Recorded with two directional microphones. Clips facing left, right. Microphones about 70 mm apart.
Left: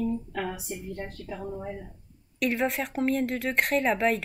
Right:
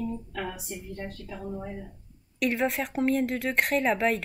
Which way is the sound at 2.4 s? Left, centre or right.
Centre.